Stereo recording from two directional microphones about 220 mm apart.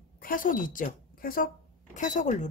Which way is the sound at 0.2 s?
40° left (ahead or behind).